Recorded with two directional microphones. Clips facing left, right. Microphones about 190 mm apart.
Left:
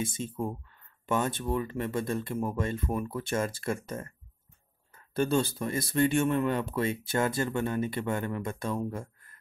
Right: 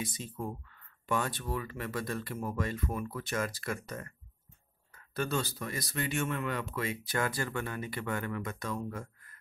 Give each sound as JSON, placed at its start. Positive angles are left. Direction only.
{"t": 0.0, "sound": "speech", "side_deg": 25}